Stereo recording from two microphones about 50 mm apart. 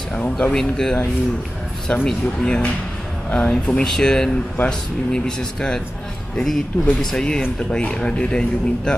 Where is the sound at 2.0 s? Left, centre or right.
Centre.